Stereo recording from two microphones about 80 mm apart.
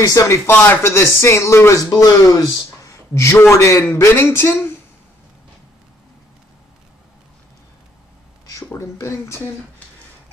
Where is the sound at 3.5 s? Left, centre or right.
Left.